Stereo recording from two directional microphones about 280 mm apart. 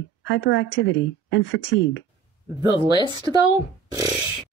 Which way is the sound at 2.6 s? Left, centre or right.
Centre.